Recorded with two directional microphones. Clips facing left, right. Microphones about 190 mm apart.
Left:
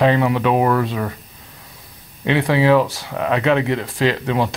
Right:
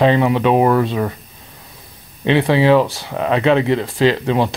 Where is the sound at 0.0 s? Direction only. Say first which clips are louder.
Right 2 dB; 25° right (ahead or behind).